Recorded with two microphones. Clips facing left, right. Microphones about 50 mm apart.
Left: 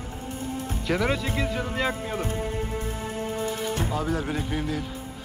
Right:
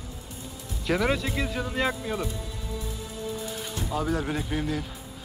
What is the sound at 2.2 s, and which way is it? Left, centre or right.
Music, left.